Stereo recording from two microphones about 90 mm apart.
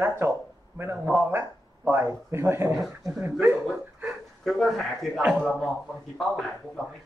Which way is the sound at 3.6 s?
Centre (ahead or behind).